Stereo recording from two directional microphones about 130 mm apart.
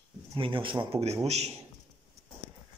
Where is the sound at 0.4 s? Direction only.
40° right (ahead or behind).